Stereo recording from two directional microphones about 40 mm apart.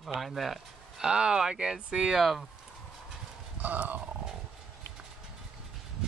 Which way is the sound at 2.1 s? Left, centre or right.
Centre.